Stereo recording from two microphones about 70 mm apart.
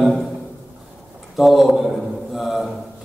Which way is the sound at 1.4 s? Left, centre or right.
Centre.